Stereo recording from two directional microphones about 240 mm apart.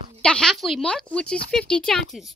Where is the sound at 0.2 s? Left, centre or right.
Centre.